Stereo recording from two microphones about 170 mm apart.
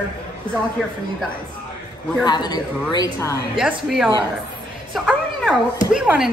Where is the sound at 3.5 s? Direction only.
5° right (ahead or behind).